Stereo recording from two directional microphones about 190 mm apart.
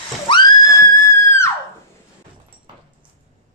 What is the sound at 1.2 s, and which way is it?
Music, 15° left (ahead or behind).